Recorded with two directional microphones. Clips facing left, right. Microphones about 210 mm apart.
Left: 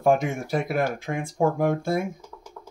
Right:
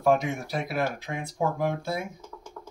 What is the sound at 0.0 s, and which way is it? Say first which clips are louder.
Speech: left 2 dB; 50° left (ahead or behind).